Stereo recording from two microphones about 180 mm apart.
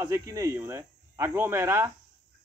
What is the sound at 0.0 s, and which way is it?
Speech, 15° right (ahead or behind).